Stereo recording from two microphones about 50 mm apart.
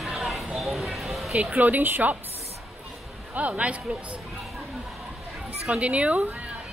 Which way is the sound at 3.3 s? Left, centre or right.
Right.